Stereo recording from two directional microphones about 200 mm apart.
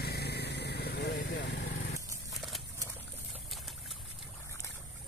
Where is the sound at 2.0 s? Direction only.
15° right (ahead or behind).